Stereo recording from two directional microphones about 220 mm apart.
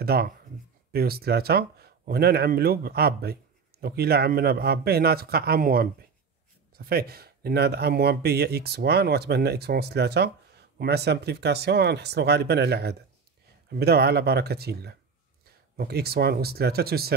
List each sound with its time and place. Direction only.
0.0 s speech: 45° right (ahead or behind)